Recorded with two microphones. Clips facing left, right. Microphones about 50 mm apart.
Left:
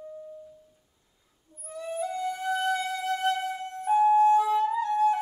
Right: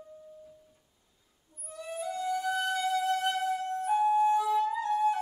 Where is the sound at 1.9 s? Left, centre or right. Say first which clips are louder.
Left 1 dB; centre.